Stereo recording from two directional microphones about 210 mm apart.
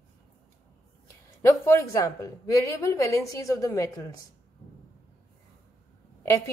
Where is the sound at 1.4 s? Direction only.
10° left (ahead or behind).